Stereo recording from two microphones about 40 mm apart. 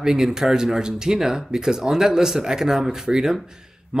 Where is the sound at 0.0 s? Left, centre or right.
Centre.